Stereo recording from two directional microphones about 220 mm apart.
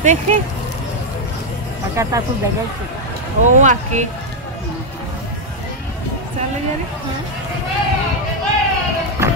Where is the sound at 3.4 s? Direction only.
35° right (ahead or behind).